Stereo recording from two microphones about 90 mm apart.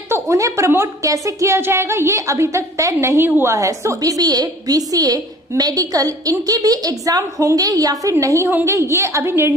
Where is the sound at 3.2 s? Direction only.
20° right (ahead or behind).